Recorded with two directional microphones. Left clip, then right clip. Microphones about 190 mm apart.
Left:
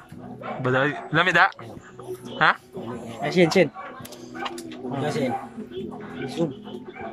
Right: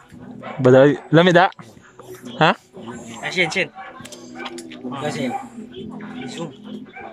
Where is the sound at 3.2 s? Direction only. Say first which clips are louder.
Left 1 dB; 30° left (ahead or behind).